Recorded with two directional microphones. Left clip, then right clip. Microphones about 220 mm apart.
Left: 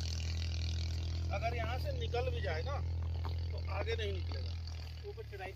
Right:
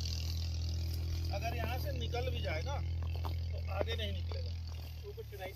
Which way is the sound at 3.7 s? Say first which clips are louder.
Even; 20° left (ahead or behind).